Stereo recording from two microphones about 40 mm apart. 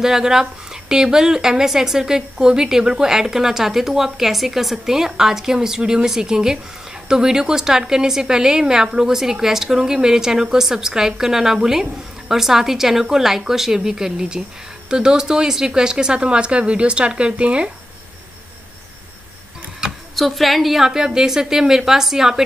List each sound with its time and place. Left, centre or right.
0.0 s speech: centre
20.2 s a woman's voice: centre
20.9 s speech: centre